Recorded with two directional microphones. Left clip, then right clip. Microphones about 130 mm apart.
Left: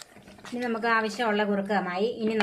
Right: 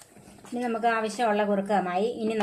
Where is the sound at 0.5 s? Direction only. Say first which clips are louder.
Even; 35° right (ahead or behind).